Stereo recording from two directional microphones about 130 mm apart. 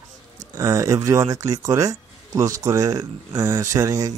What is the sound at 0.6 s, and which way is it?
Speech, 25° right (ahead or behind).